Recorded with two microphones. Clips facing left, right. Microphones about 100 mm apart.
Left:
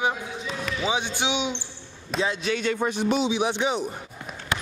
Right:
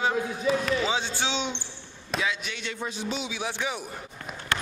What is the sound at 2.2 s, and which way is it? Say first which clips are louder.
Speech: left 5 dB; 40° left (ahead or behind).